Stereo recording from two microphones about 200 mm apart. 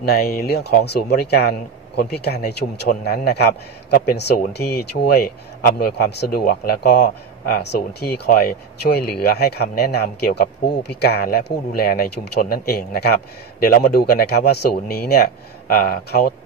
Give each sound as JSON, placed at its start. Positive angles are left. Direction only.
{"t": 0.0, "sound": "a man's voice", "side_deg": 50}
{"t": 3.9, "sound": "a man's voice", "side_deg": 50}